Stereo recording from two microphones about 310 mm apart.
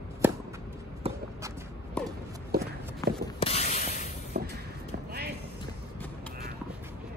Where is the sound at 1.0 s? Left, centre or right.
Centre.